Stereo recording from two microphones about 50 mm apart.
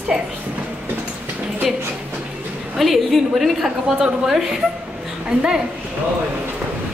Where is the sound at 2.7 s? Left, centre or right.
Centre.